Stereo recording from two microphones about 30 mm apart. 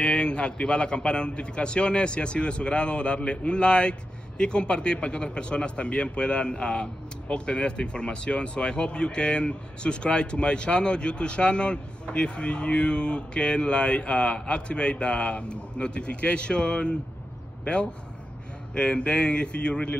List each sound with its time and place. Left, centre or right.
0.0 s a man's voice: left
18.8 s a man's voice: left